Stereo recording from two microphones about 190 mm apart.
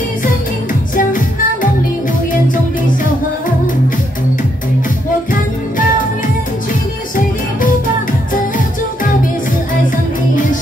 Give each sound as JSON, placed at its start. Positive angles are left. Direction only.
{"t": 0.9, "sound": "music", "side_deg": 45}
{"t": 5.3, "sound": "music", "side_deg": 45}
{"t": 9.8, "sound": "music", "side_deg": 45}